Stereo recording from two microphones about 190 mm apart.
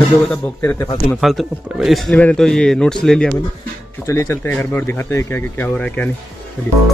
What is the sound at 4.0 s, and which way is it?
Speech, 15° left (ahead or behind).